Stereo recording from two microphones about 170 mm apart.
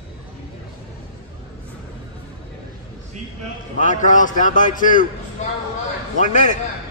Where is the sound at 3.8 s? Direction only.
50° left (ahead or behind).